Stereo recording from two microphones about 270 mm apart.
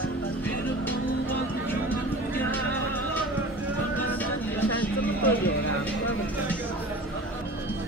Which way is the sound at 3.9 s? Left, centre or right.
Centre.